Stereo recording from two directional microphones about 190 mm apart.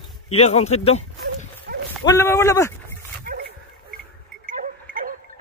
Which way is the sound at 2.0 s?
15° left (ahead or behind).